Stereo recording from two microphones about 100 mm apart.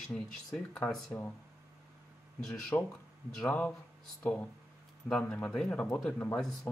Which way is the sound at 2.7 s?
35° left (ahead or behind).